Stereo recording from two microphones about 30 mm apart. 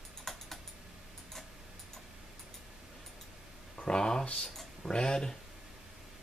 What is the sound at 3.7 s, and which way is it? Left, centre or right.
Speech, left.